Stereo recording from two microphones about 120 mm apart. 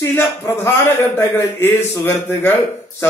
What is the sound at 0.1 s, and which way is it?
A man's voice, 20° left (ahead or behind).